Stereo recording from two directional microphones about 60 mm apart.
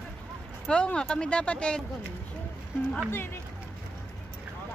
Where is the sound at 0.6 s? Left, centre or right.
Centre.